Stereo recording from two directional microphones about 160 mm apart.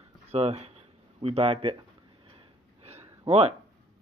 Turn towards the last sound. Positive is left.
turn(degrees=-40)  # may be behind; listen again after turning